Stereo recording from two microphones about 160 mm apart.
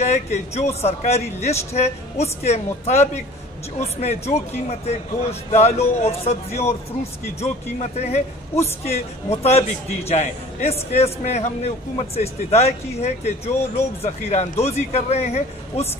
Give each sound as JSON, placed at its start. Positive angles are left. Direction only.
{"t": 0.0, "sound": "a man's voice", "side_deg": 45}